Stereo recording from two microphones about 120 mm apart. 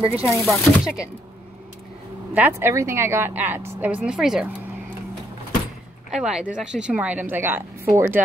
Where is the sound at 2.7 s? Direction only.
25° right (ahead or behind); by 4.5 s 5° right (ahead or behind).